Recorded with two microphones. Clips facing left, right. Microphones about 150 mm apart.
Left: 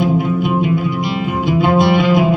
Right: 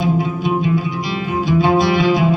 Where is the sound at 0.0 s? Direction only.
55° left (ahead or behind).